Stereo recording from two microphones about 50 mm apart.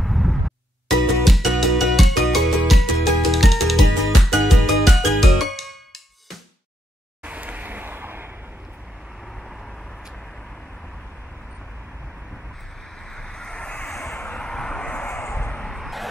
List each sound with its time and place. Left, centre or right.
0.0 s music: centre
7.2 s vehicle: right
13.1 s vehicle: centre
13.8 s vehicle: centre
14.9 s vehicle: left
15.5 s vehicle: centre